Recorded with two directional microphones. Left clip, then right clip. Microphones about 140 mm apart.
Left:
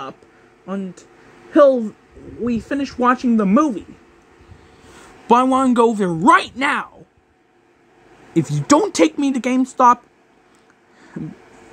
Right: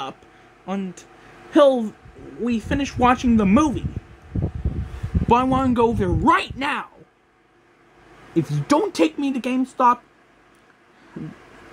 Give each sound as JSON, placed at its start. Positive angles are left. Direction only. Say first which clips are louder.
{"t": 0.7, "sound": "speech", "louder": "left 1 dB", "side_deg": -5}
{"t": 5.2, "sound": "a man's voice", "louder": "left 4 dB", "side_deg": 25}
{"t": 8.3, "sound": "speech", "louder": "left 5 dB", "side_deg": 35}